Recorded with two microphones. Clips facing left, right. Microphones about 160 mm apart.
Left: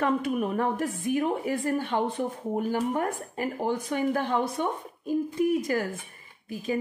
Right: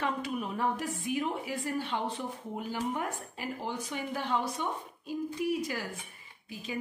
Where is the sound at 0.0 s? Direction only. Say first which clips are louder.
Left 7 dB; 50° left (ahead or behind).